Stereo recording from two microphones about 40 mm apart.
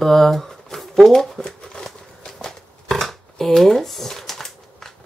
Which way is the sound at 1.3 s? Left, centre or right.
Centre.